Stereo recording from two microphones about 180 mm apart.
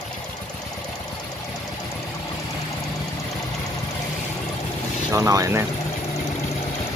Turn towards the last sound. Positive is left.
turn(degrees=-15)  # may be behind; listen again after turning